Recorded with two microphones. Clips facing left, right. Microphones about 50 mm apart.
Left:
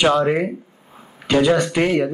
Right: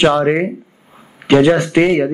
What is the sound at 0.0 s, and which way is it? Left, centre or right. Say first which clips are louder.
Speech: right 4 dB; right.